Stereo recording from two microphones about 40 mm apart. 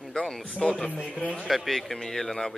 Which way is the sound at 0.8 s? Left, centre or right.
Left.